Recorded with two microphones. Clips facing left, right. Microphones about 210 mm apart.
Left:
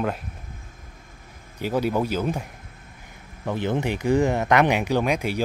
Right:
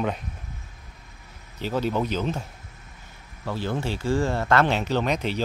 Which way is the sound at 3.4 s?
20° left (ahead or behind).